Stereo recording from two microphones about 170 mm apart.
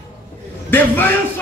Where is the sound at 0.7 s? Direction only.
10° left (ahead or behind).